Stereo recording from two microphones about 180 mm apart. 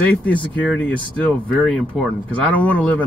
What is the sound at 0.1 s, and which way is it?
Speech, 5° left (ahead or behind).